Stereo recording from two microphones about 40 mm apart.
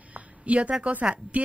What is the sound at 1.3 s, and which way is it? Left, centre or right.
Speech, right.